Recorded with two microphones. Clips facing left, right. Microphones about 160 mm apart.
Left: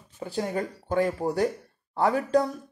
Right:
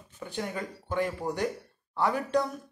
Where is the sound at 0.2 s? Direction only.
35° left (ahead or behind).